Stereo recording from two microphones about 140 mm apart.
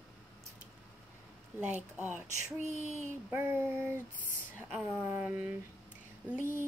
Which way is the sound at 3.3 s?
15° right (ahead or behind).